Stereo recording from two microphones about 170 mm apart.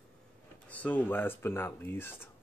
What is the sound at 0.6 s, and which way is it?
Speech, 10° left (ahead or behind).